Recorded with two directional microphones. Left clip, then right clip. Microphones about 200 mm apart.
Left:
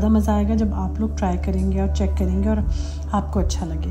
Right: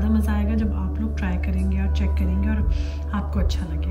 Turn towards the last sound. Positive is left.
turn(degrees=15)  # may be behind; listen again after turning